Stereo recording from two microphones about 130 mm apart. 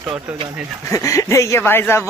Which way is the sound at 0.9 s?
25° left (ahead or behind).